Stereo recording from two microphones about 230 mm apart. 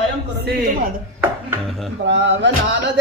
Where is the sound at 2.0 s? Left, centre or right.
Right.